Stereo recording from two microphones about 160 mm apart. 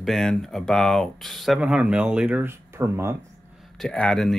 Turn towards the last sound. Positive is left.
turn(degrees=5)  # may be behind; listen again after turning